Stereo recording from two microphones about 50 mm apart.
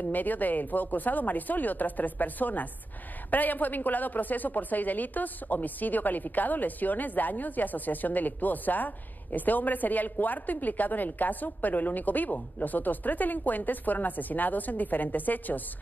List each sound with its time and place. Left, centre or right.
0.1 s a woman's voice: left